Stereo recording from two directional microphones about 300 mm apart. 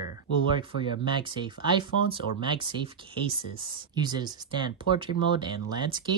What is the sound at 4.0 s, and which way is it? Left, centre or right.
Speech, centre.